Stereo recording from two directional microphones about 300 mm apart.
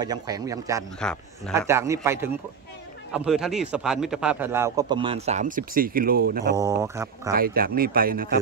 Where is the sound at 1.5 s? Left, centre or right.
Centre; by 6.6 s right.